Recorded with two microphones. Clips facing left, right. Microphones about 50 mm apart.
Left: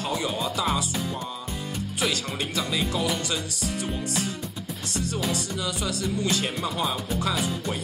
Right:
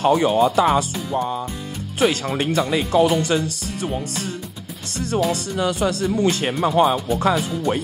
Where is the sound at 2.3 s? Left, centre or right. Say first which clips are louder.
Right 8 dB; right.